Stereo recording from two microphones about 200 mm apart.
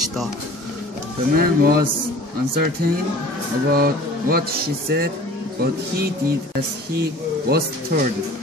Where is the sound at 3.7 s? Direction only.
50° right (ahead or behind).